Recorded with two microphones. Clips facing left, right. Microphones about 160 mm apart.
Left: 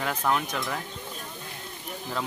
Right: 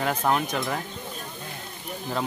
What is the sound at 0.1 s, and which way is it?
Speech, 30° right (ahead or behind).